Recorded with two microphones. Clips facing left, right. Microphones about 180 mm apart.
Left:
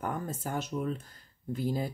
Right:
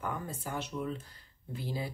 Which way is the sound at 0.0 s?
45° left (ahead or behind).